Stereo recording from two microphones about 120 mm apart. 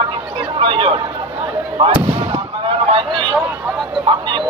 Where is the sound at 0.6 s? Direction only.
45° right (ahead or behind).